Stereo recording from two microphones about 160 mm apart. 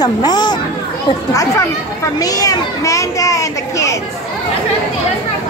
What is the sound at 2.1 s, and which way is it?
A child's voice, 25° left (ahead or behind).